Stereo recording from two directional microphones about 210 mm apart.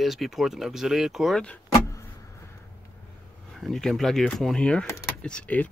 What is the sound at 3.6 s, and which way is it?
Speech, centre (ahead or behind).